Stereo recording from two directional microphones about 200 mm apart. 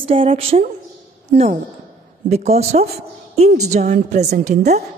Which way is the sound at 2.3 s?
30° right (ahead or behind).